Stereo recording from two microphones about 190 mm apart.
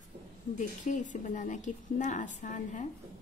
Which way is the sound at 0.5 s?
40° left (ahead or behind).